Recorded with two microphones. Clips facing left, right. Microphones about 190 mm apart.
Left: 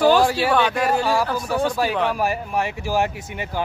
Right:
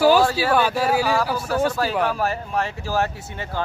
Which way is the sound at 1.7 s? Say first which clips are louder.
Left 1 dB; 10° left (ahead or behind).